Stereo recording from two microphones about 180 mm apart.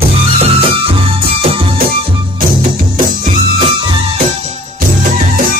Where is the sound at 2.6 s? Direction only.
50° right (ahead or behind).